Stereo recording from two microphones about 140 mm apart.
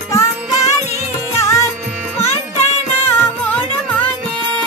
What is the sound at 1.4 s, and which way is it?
Music, 20° left (ahead or behind).